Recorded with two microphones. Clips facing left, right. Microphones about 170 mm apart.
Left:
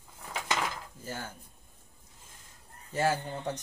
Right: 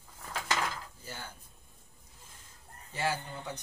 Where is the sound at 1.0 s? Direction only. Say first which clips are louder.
Left 8 dB; 45° left (ahead or behind).